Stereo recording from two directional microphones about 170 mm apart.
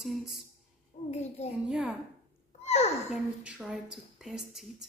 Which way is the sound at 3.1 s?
5° right (ahead or behind).